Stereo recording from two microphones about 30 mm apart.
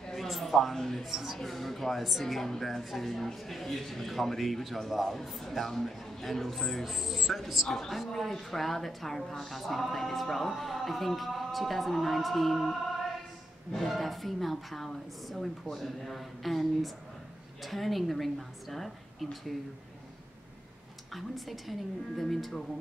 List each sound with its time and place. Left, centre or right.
0.3 s a sound: centre
0.7 s a man's voice: centre
1.0 s a woman's voice: centre
6.9 s a woman's voice: centre
7.6 s a man's voice: centre
7.9 s a woman's voice: centre
21.1 s a woman's voice: centre